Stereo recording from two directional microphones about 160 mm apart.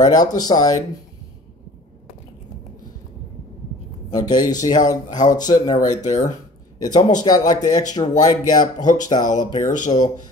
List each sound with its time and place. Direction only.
0.0 s speech: 25° left (ahead or behind)
4.1 s speech: 25° left (ahead or behind)
6.0 s speech: 50° left (ahead or behind)
6.8 s speech: 25° left (ahead or behind)
9.6 s speech: 50° left (ahead or behind)